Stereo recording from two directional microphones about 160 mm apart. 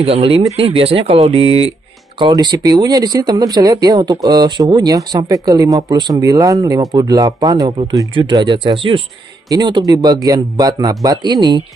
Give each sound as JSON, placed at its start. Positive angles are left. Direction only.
{"t": 0.0, "sound": "speech", "side_deg": -35}